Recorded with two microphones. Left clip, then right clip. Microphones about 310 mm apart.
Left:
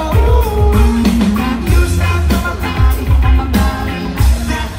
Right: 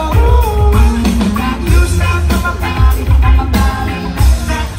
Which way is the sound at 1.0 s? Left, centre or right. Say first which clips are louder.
Left 1 dB; right.